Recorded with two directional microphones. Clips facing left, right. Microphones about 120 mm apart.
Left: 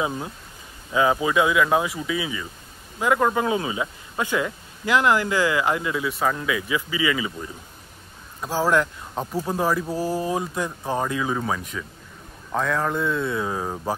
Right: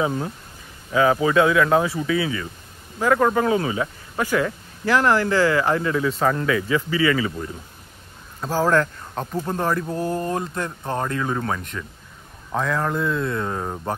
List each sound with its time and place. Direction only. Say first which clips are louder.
0.0 s speech: right 3 dB; 10° left (ahead or behind)
8.4 s speech: right 2 dB; 15° left (ahead or behind)